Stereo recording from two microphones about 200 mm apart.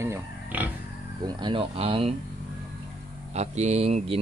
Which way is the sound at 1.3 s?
20° right (ahead or behind).